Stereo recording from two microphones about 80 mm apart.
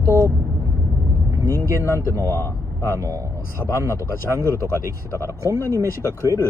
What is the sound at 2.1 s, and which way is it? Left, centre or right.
Speech, right.